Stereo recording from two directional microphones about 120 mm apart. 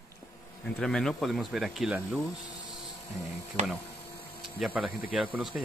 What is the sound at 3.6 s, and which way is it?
Speech, 75° right (ahead or behind).